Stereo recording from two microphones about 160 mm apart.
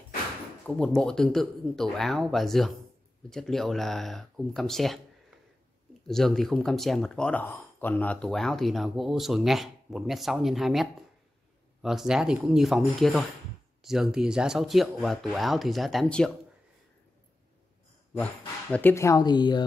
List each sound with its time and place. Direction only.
0.7 s speech: 5° left (ahead or behind)
6.0 s speech: centre (ahead or behind)
18.7 s speech: 10° left (ahead or behind); by 19.6 s 25° left (ahead or behind)